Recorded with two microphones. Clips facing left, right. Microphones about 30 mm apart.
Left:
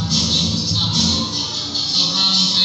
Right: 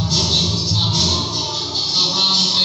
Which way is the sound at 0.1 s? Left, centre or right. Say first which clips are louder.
Even; right.